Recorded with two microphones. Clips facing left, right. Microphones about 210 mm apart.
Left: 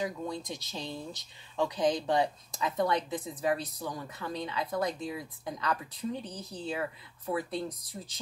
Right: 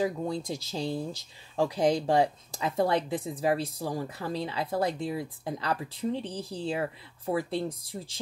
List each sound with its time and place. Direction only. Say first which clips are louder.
0.0 s speech: right 5 dB; 30° right (ahead or behind)